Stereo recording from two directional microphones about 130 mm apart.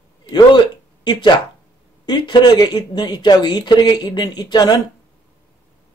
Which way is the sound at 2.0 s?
35° left (ahead or behind).